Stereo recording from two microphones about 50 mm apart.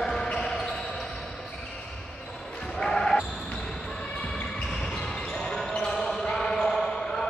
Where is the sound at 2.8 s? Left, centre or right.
Centre.